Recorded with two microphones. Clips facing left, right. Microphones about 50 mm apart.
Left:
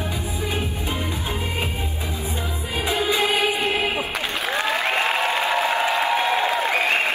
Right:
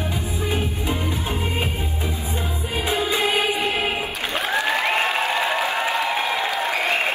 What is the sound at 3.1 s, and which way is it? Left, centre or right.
Music, right.